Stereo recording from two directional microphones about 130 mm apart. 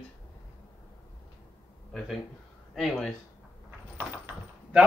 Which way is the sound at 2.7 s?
Centre (ahead or behind).